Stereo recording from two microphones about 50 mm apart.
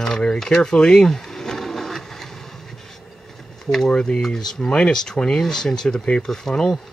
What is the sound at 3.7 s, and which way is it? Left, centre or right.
Speech, centre.